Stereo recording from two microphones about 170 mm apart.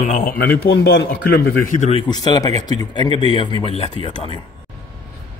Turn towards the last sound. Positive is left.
turn(degrees=35)  # may be behind; listen again after turning